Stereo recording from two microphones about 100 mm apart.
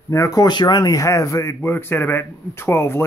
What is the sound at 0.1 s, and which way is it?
A man's voice, 35° left (ahead or behind).